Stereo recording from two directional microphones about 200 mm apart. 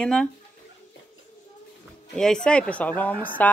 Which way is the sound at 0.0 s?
5° left (ahead or behind).